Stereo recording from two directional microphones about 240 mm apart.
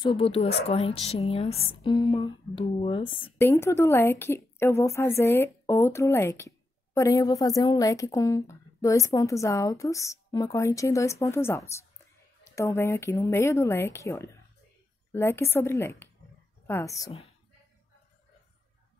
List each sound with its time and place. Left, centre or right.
0.0 s a woman's voice: left
3.3 s a woman's voice: centre